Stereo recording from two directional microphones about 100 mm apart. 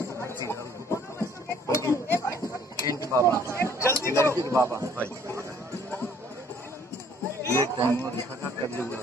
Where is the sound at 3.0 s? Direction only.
35° right (ahead or behind).